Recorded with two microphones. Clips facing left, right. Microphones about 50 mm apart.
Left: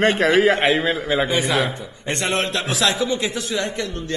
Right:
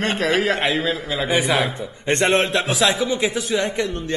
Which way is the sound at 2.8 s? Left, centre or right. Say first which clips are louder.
Even; centre.